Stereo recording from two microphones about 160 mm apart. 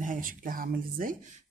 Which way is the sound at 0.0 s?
60° right (ahead or behind).